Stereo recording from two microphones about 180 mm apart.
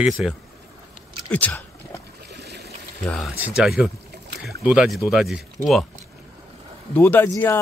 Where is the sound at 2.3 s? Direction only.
65° right (ahead or behind).